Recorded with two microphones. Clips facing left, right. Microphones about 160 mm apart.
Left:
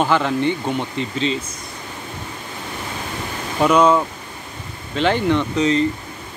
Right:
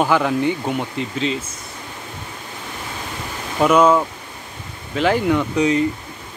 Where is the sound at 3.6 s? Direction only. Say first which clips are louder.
Right 1 dB; 5° right (ahead or behind).